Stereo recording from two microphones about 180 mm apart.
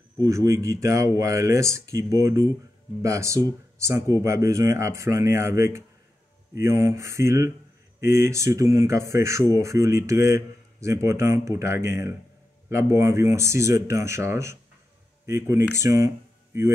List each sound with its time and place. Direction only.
0.2 s speech: 20° right (ahead or behind)